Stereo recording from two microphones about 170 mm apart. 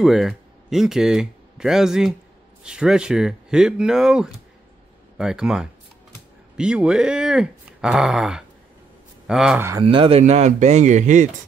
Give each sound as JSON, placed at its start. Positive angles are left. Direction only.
{"t": 0.0, "sound": "speech", "side_deg": 0}
{"t": 9.8, "sound": "speech", "side_deg": -30}